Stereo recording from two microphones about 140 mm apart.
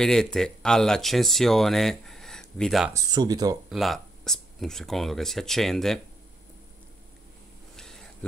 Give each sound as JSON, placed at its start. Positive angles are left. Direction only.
{"t": 0.0, "sound": "speech", "side_deg": 5}
{"t": 2.9, "sound": "speech", "side_deg": -25}
{"t": 3.7, "sound": "speech", "side_deg": 0}
{"t": 7.7, "sound": "a sound", "side_deg": 5}